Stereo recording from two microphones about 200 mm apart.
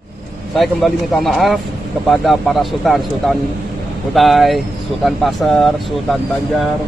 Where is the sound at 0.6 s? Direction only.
Centre (ahead or behind).